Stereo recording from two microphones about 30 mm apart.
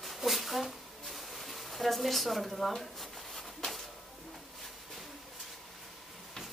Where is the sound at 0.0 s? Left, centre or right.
Centre.